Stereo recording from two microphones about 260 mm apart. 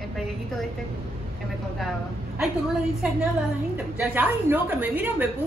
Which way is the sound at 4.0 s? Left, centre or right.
Centre.